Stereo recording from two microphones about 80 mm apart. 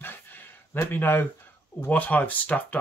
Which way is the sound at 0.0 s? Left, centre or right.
Left.